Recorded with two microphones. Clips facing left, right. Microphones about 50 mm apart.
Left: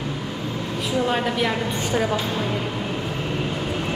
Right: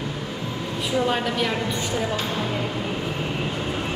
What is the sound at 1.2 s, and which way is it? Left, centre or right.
Speech, centre.